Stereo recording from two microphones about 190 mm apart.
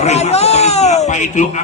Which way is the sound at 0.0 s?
35° left (ahead or behind).